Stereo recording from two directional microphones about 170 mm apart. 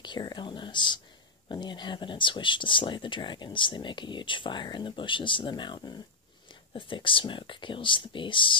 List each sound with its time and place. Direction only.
0.0 s speech: 25° left (ahead or behind)